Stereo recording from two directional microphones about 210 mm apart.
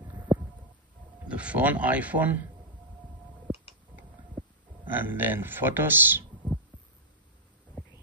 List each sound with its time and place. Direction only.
0.3 s a sound: 5° right (ahead or behind)
1.3 s speech: 5° right (ahead or behind)
4.9 s speech: 10° right (ahead or behind)